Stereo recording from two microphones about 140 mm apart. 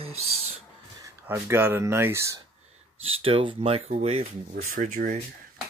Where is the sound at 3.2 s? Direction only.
40° right (ahead or behind).